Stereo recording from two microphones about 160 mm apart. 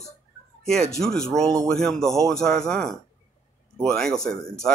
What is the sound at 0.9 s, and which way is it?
Speech, 5° left (ahead or behind).